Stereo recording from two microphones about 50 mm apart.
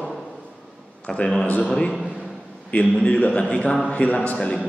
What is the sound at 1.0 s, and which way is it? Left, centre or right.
Speech, centre.